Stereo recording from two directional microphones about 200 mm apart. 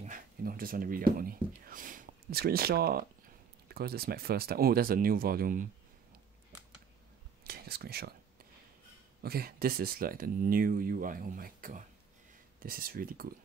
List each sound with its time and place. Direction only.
0.0 s speech: 45° right (ahead or behind)
7.4 s whispering: 50° right (ahead or behind)
9.2 s speech: 50° right (ahead or behind)